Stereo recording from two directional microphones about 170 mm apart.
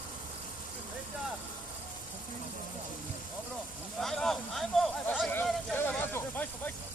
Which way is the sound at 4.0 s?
Centre (ahead or behind).